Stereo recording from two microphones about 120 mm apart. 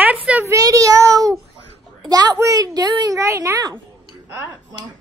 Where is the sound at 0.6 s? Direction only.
30° right (ahead or behind).